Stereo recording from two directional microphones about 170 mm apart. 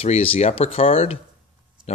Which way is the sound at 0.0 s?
35° left (ahead or behind).